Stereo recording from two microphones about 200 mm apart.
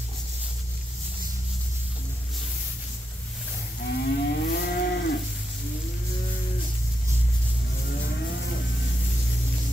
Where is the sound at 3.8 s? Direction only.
55° left (ahead or behind).